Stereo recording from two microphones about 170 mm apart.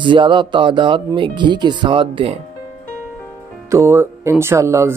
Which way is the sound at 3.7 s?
15° right (ahead or behind).